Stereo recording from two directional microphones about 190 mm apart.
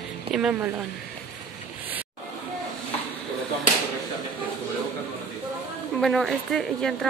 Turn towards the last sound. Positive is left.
turn(degrees=5)  # may be behind; listen again after turning